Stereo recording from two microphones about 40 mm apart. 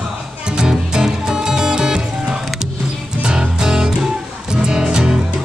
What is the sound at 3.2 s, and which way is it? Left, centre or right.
Music, centre.